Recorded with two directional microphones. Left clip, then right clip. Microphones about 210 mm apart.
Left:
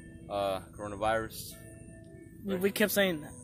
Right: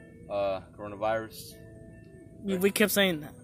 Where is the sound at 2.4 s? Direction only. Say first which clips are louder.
Right 3 dB; 35° right (ahead or behind).